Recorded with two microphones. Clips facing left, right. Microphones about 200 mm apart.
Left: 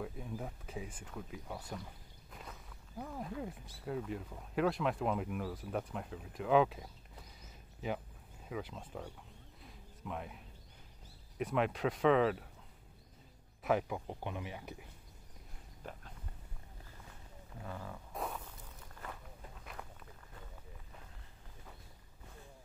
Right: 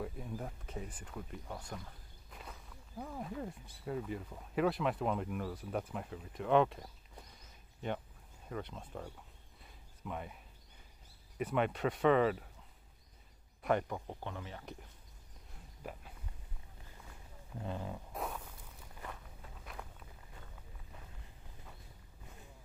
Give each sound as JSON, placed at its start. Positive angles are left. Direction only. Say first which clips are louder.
{"t": 0.0, "sound": "speech", "louder": "even", "side_deg": 0}
{"t": 8.5, "sound": "speech", "louder": "left 1 dB", "side_deg": 5}
{"t": 9.6, "sound": "a sound", "louder": "even", "side_deg": 0}
{"t": 11.3, "sound": "speech", "louder": "even", "side_deg": 0}
{"t": 13.6, "sound": "a man's voice", "louder": "even", "side_deg": 0}
{"t": 15.8, "sound": "speech", "louder": "right 2 dB", "side_deg": -5}
{"t": 17.6, "sound": "roaring cats", "louder": "right 4 dB", "side_deg": -20}
{"t": 18.1, "sound": "a sound", "louder": "left 2 dB", "side_deg": 0}
{"t": 19.6, "sound": "walk", "louder": "right 1 dB", "side_deg": 0}